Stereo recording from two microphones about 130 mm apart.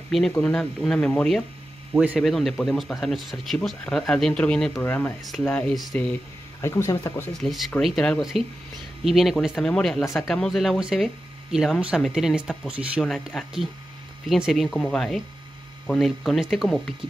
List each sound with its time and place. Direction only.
0.4 s speech: 5° left (ahead or behind)
6.6 s speech: 20° left (ahead or behind)
7.3 s speech: centre (ahead or behind)
13.0 s speech: 5° left (ahead or behind)